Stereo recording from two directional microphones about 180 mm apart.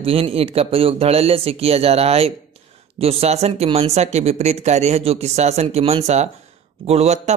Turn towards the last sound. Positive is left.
turn(degrees=-40)  # may be behind; listen again after turning